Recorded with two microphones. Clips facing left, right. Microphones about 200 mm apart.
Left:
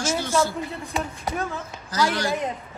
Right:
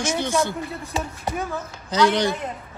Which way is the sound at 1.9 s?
20° right (ahead or behind).